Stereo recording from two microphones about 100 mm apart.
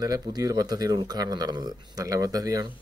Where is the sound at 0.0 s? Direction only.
40° right (ahead or behind).